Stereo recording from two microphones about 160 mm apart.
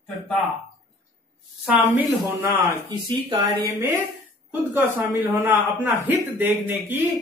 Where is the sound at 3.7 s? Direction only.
20° right (ahead or behind).